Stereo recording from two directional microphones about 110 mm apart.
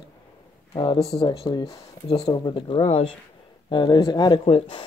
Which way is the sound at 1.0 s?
65° left (ahead or behind).